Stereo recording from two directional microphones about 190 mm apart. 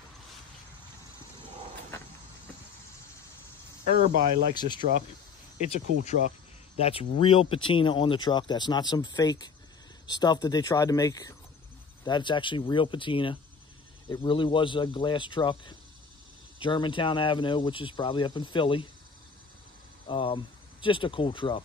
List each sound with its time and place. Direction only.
4.0 s speech: 45° right (ahead or behind)
4.6 s speech: 25° left (ahead or behind)
6.8 s speech: 30° left (ahead or behind)
20.1 s speech: 25° left (ahead or behind)